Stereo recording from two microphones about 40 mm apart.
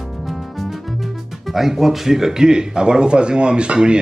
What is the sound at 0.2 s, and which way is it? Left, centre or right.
Speech, centre.